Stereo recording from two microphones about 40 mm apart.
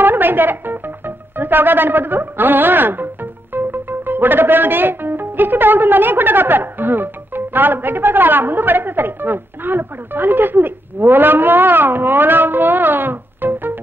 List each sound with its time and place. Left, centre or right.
0.0 s speech: right